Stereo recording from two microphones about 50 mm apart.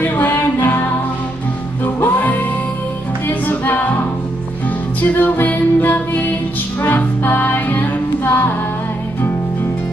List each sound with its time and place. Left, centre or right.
0.0 s music: left
2.0 s music: left
5.0 s music: left